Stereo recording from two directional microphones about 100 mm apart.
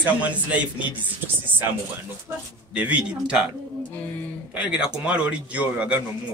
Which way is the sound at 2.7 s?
15° right (ahead or behind).